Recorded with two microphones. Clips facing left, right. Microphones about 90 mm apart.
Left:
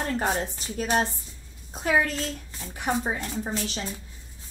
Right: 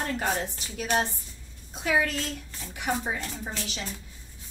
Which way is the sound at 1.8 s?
40° left (ahead or behind).